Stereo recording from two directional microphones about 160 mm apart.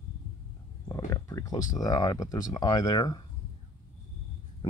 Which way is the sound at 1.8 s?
25° left (ahead or behind).